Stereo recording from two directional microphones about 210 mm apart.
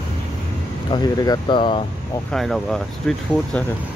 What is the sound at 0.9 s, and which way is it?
Speech, 20° left (ahead or behind).